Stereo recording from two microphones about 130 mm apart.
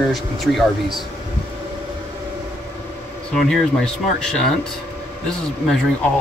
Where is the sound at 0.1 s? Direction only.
Centre (ahead or behind).